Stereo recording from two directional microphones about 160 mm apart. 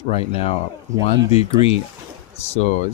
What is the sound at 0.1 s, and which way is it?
Speech, 40° left (ahead or behind).